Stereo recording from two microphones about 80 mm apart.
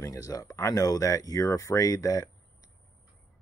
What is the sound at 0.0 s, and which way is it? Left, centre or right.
Speech, left.